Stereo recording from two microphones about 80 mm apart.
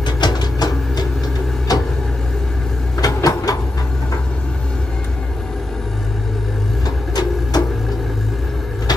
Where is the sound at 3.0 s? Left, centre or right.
Left.